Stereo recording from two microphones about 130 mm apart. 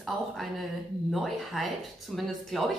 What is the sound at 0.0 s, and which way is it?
Speech, centre (ahead or behind).